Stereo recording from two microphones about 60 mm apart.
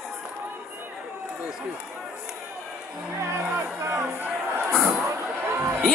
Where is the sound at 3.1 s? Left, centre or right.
Right.